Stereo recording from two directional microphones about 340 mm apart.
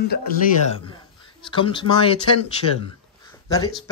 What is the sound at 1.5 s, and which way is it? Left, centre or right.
Speech, centre.